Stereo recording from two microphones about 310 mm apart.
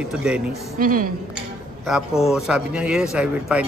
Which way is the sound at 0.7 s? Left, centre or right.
Right.